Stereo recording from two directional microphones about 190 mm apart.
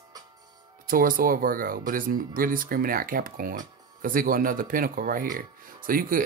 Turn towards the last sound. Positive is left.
turn(degrees=-50)  # may be behind; listen again after turning